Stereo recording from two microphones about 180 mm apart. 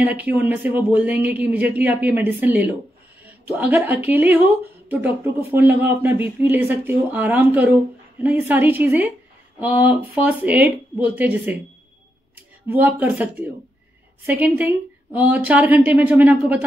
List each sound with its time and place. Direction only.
0.0 s speech: 10° right (ahead or behind)
12.6 s speech: 10° right (ahead or behind)